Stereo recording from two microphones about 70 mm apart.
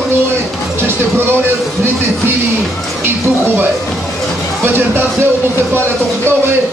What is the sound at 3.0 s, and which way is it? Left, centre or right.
Speech, right.